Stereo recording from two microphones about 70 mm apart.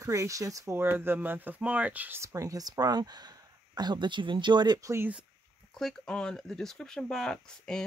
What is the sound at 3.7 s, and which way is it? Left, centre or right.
Speech, right.